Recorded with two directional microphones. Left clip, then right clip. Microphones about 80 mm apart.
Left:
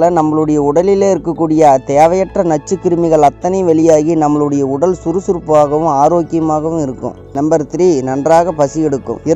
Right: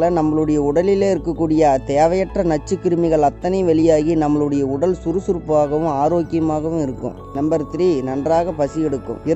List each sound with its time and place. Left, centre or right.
0.0 s speech: left
7.4 s speech: left
8.1 s speech: left